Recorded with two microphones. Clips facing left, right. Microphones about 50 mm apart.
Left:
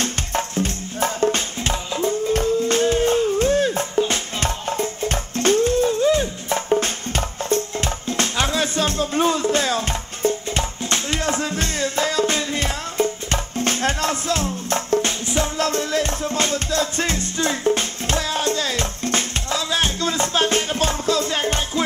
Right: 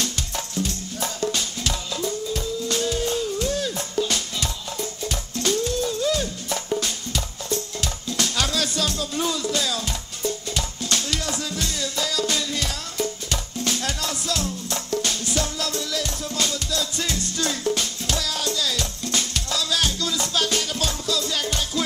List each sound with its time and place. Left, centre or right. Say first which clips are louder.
0.0 s music: left 5 dB; left
4.4 s music: left 6 dB; left